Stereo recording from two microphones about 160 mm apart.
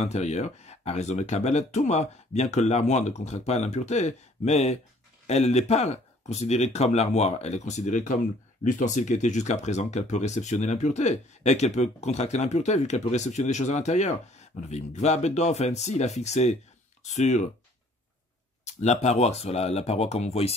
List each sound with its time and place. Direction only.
0.0 s speech: 45° left (ahead or behind)
18.6 s speech: 45° left (ahead or behind)